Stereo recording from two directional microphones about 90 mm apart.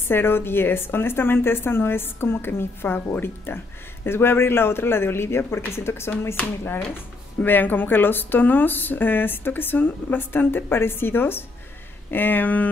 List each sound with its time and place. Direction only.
0.1 s a woman's voice: 25° left (ahead or behind)
7.4 s a woman's voice: 20° left (ahead or behind)